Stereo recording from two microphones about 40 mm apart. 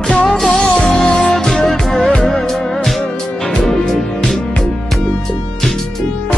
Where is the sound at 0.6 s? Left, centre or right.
Left.